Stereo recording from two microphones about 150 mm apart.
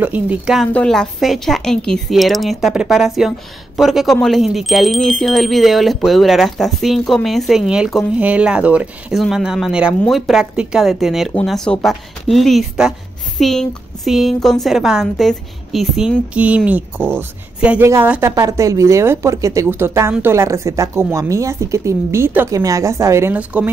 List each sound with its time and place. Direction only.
0.0 s speech: 10° right (ahead or behind)
0.7 s speech: 5° left (ahead or behind); by 23.7 s 10° right (ahead or behind)